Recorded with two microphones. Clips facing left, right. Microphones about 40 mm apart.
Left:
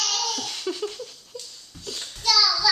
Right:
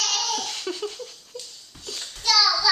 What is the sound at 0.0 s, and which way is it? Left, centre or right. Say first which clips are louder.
Laughter: right 1 dB; centre.